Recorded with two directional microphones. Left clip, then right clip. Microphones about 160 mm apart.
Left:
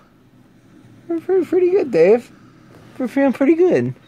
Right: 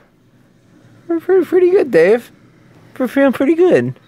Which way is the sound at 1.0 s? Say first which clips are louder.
Right 4 dB; 25° right (ahead or behind).